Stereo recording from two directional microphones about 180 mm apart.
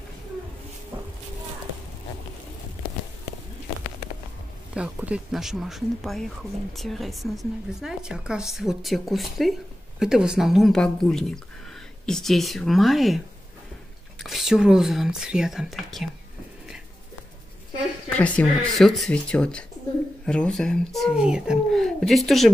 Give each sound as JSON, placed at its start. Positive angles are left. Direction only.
{"t": 4.7, "sound": "speech", "side_deg": -5}
{"t": 14.2, "sound": "speech", "side_deg": 0}
{"t": 18.1, "sound": "speech", "side_deg": 5}